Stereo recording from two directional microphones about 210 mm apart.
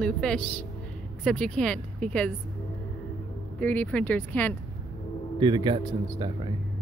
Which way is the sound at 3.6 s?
5° left (ahead or behind).